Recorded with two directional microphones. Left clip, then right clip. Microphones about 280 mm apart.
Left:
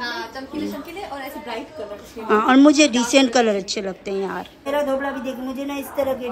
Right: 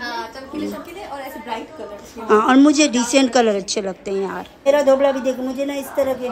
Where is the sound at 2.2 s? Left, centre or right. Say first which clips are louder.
Right 1 dB; centre.